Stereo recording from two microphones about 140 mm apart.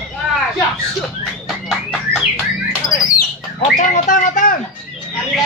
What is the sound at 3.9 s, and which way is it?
Speech, 70° left (ahead or behind).